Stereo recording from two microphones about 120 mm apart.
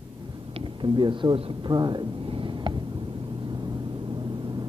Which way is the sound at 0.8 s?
40° right (ahead or behind).